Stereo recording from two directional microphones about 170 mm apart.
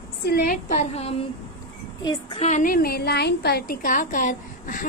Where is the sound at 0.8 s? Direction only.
40° left (ahead or behind).